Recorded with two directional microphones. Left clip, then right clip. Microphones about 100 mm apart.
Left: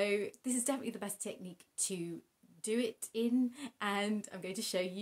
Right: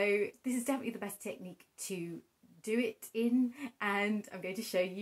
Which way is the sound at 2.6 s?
15° left (ahead or behind).